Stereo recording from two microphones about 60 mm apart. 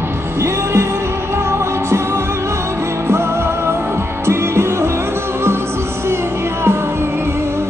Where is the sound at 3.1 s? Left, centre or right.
Right.